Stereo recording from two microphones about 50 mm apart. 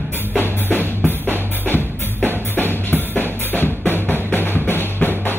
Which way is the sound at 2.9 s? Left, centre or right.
Left.